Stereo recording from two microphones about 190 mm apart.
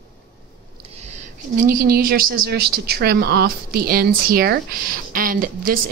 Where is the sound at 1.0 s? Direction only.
40° right (ahead or behind).